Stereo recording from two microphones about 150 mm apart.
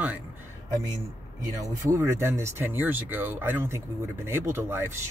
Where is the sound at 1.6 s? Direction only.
20° right (ahead or behind).